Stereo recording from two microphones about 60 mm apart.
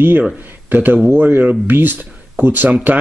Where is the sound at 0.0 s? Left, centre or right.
Right.